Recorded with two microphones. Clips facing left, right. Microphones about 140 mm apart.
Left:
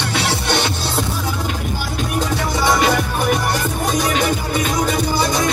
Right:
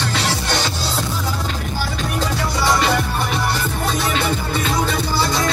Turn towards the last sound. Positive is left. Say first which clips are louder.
# left 2 dB
turn(degrees=20)  # may be behind; listen again after turning